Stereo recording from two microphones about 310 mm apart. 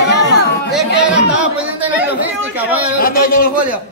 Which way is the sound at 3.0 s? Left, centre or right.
Left.